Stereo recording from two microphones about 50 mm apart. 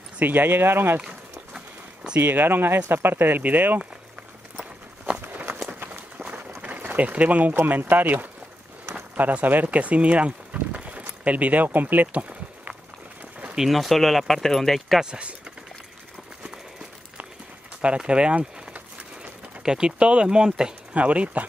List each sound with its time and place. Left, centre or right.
0.2 s speech: right
2.1 s speech: right
5.7 s run: right
6.6 s a sound: right
7.9 s speech: right
13.6 s speech: centre
17.8 s speech: right
19.6 s speech: centre
20.9 s speech: right